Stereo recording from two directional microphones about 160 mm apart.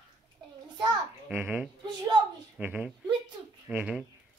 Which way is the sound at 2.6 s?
10° right (ahead or behind).